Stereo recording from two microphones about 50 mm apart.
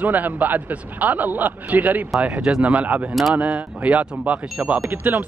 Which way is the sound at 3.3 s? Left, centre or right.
Right.